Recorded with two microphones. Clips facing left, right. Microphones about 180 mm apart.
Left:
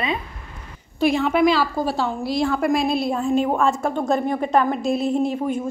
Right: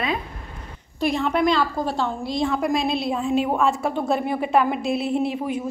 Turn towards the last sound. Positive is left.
turn(degrees=45)  # may be behind; listen again after turning